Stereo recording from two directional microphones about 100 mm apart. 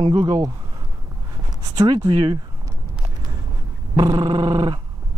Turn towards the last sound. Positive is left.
turn(degrees=-45)  # may be behind; listen again after turning